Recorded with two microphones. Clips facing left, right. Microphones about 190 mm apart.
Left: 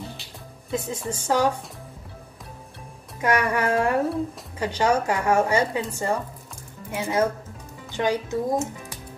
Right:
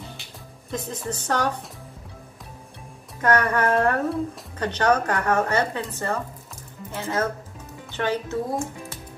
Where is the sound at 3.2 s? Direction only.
10° left (ahead or behind).